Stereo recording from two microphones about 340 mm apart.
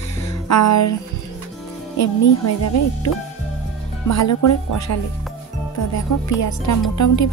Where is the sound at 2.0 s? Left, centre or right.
Left.